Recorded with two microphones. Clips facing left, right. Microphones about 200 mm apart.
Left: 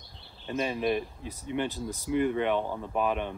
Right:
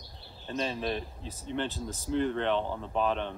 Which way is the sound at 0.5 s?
15° left (ahead or behind).